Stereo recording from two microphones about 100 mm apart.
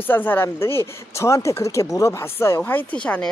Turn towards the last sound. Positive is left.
turn(degrees=15)  # may be behind; listen again after turning